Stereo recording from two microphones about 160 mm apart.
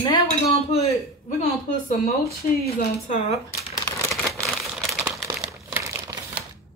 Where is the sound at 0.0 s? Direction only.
35° left (ahead or behind).